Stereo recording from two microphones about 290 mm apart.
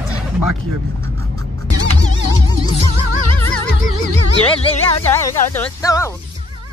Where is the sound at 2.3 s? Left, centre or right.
Centre.